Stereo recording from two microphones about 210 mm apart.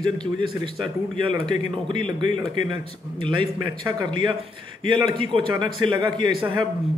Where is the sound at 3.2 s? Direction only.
25° right (ahead or behind).